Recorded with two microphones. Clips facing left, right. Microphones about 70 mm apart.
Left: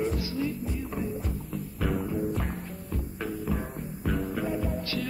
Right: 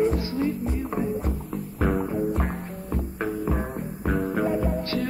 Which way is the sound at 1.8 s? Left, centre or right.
Right.